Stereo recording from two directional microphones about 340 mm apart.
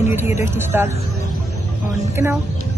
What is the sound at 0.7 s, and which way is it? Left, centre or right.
Speech, centre.